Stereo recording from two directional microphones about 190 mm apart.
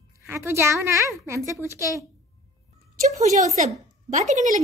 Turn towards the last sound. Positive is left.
turn(degrees=-40)  # may be behind; listen again after turning